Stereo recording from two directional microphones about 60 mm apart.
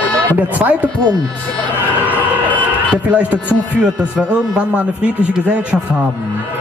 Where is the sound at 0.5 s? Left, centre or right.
Right.